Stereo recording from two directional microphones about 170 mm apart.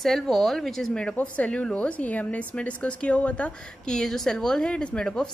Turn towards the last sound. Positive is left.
turn(degrees=5)  # may be behind; listen again after turning